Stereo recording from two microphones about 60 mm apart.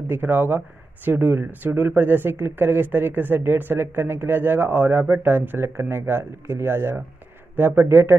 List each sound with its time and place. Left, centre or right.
0.1 s speech: right